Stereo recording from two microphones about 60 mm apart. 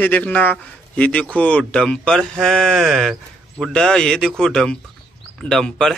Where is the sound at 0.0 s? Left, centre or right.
Left.